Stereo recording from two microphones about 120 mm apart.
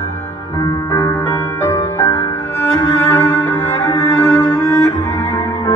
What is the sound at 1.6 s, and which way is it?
Music, 20° left (ahead or behind).